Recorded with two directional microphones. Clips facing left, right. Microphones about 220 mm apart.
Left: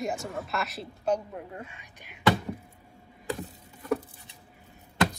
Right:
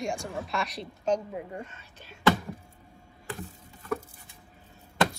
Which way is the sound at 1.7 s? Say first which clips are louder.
Right 1 dB; 15° left (ahead or behind).